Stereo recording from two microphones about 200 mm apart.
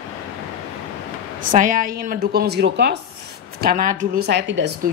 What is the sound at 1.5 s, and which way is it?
A woman's voice, 40° right (ahead or behind).